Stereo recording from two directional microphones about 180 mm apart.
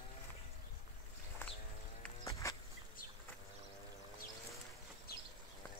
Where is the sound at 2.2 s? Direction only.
20° left (ahead or behind).